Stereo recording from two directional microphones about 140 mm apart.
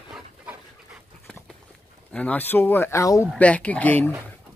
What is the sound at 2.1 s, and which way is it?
Speech, 10° left (ahead or behind).